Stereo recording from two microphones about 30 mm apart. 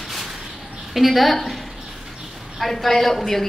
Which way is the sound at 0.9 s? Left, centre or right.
Centre.